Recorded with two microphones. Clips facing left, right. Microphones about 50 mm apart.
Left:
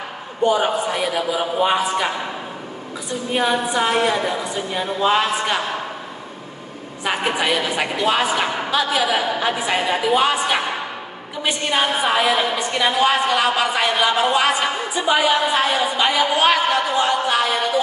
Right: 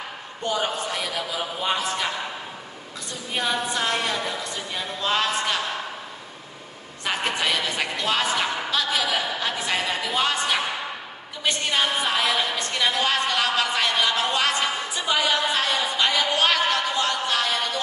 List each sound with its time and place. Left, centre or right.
0.4 s a woman's voice: centre
7.1 s a woman's voice: centre